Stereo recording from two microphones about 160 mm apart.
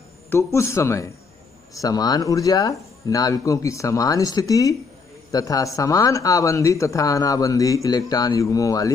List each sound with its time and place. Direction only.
0.3 s speech: 15° left (ahead or behind)